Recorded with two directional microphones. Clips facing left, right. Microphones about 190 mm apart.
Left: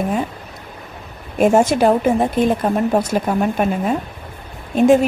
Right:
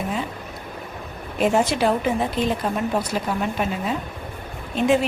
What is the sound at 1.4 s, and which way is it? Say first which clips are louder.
A woman's voice: left 6 dB; 45° left (ahead or behind).